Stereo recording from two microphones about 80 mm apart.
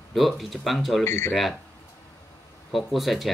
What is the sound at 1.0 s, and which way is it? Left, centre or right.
Speech, left.